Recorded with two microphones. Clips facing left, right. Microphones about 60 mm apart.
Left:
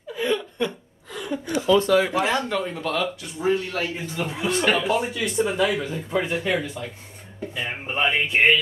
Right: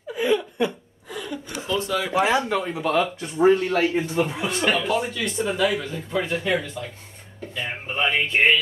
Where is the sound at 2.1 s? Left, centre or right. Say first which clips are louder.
Right 2 dB; centre.